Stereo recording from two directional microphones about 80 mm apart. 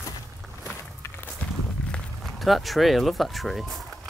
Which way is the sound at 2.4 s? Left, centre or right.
Centre.